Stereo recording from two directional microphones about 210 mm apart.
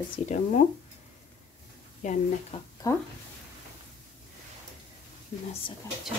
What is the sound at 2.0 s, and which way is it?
Speech, 35° left (ahead or behind).